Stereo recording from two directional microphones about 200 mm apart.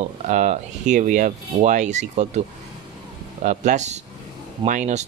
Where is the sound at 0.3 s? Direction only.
35° right (ahead or behind).